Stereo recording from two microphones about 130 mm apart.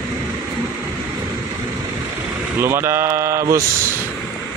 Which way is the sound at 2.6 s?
20° right (ahead or behind).